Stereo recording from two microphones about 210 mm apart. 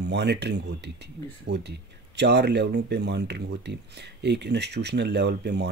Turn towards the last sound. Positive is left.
turn(degrees=-50)  # may be behind; listen again after turning